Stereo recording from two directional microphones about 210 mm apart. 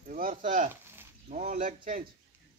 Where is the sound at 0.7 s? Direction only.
10° right (ahead or behind).